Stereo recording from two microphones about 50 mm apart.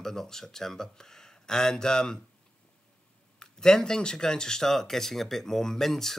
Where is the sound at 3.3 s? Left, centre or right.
Centre.